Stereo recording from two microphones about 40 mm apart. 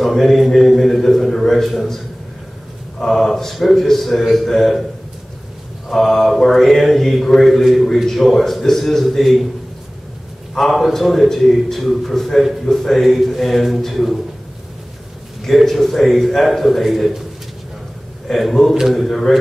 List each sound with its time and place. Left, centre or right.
0.0 s mantra: centre
3.1 s mantra: centre
5.9 s mantra: centre
10.7 s mantra: centre
15.4 s mantra: centre
18.3 s mantra: centre